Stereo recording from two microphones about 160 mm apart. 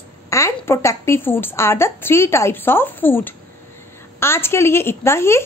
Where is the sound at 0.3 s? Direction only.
15° left (ahead or behind).